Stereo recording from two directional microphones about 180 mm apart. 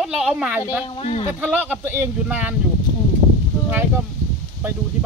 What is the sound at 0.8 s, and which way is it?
Speech, 30° left (ahead or behind).